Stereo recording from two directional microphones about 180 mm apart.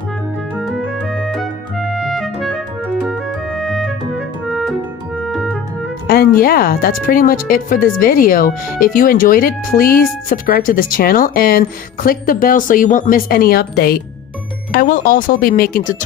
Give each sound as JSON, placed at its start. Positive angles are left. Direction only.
{"t": 0.6, "sound": "music", "side_deg": 0}
{"t": 2.0, "sound": "clarinet", "side_deg": 0}
{"t": 3.6, "sound": "music", "side_deg": 0}
{"t": 5.3, "sound": "clarinet", "side_deg": 0}
{"t": 6.0, "sound": "speech", "side_deg": 55}